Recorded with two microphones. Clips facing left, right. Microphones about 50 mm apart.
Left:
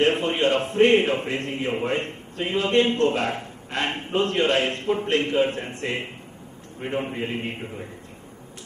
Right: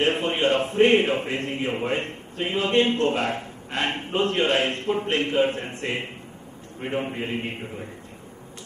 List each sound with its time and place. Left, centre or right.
0.0 s a sound: centre
0.5 s a man's voice: centre
2.5 s a man's voice: centre
2.8 s a man's voice: centre